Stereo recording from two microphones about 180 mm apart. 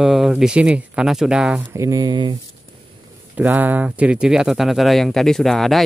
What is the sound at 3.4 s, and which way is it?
Speech, 10° right (ahead or behind).